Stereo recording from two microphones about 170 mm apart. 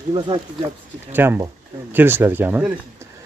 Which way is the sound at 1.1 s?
15° right (ahead or behind).